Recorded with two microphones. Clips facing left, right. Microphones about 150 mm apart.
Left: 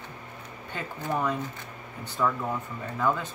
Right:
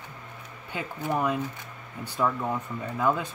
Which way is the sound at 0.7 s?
10° right (ahead or behind).